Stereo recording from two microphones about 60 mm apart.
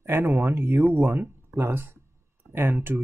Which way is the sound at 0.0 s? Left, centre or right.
Right.